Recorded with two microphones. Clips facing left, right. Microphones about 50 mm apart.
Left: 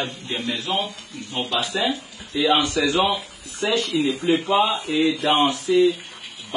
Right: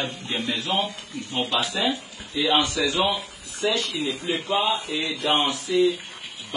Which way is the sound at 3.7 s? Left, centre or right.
Left.